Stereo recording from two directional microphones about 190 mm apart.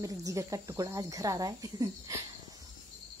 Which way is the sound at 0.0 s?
15° right (ahead or behind).